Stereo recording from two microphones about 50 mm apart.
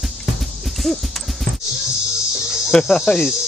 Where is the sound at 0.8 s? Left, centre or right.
Centre.